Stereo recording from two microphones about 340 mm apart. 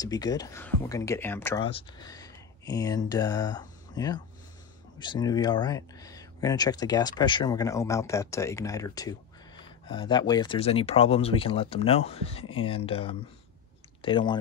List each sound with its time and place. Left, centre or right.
0.0 s speech: centre